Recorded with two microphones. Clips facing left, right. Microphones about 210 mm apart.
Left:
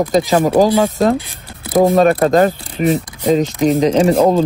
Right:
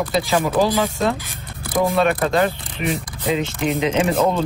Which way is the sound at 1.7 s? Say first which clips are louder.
Left 7 dB; 45° left (ahead or behind).